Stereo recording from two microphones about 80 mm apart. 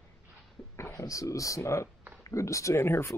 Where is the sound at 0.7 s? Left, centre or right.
Left.